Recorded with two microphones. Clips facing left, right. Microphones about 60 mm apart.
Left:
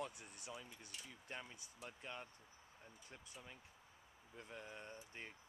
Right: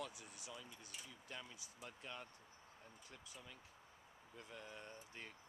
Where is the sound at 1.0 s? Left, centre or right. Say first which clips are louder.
Left 3 dB; left.